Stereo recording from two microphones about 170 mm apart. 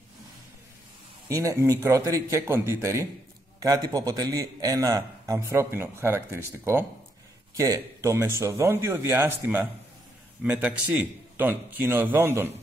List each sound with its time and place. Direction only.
1.3 s a man's voice: 20° right (ahead or behind)